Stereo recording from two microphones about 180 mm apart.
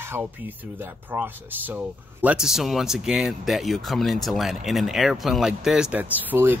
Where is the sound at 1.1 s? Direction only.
10° right (ahead or behind).